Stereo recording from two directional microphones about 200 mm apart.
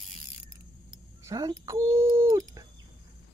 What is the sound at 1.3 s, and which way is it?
Speech, 15° right (ahead or behind).